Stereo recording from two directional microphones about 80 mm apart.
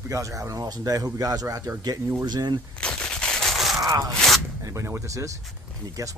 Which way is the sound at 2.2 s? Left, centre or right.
Right.